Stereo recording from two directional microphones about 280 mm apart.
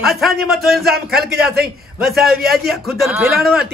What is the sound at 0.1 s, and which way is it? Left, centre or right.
A man's voice, centre.